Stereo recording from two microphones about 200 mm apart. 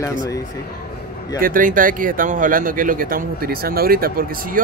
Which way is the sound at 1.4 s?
45° right (ahead or behind).